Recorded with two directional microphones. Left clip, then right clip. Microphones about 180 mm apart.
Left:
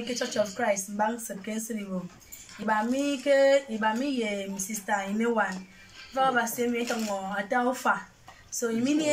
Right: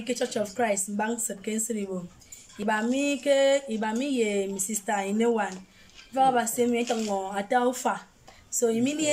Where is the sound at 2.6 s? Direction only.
50° right (ahead or behind).